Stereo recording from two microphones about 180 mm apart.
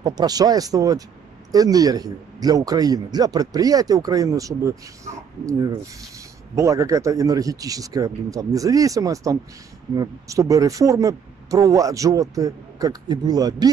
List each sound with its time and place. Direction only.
0.0 s speech: 20° right (ahead or behind)